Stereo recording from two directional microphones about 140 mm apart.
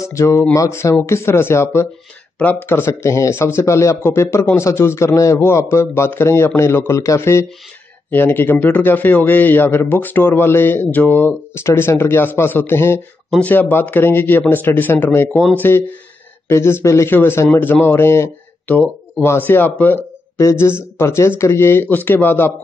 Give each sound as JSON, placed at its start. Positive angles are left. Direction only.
{"t": 0.0, "sound": "speech", "side_deg": 20}